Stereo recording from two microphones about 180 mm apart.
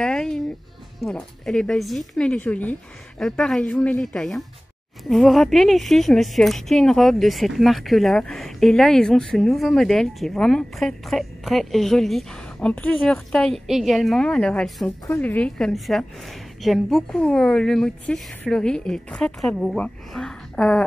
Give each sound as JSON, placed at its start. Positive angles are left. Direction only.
{"t": 0.0, "sound": "music", "side_deg": 5}
{"t": 1.0, "sound": "a woman's voice", "side_deg": 5}